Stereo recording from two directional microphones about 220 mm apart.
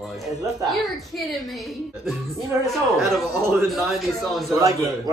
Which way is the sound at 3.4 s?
10° right (ahead or behind).